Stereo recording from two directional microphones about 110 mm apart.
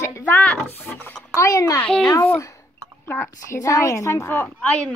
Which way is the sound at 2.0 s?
25° left (ahead or behind).